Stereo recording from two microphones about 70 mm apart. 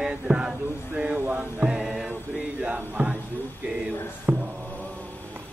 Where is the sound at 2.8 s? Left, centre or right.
Right.